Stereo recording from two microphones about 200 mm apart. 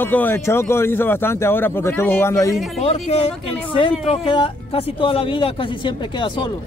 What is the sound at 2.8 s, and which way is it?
Speech, 30° left (ahead or behind).